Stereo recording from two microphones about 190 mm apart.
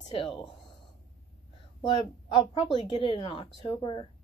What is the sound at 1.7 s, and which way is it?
A woman's voice, 25° left (ahead or behind).